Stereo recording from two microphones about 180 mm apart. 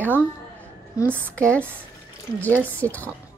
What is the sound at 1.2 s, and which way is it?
Speech, 5° left (ahead or behind).